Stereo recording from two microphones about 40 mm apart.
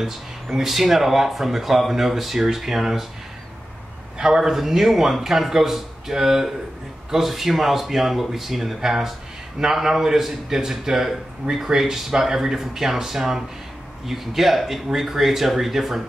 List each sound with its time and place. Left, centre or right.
0.6 s a man's voice: centre
4.2 s a man's voice: centre